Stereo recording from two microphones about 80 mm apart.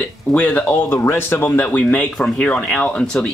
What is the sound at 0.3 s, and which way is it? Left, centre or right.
Speech, centre.